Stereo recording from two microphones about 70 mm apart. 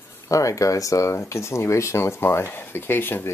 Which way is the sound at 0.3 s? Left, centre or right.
Left.